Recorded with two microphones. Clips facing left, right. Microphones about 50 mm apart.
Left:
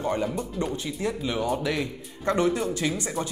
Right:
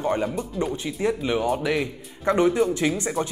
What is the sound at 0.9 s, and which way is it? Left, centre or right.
A man's voice, right.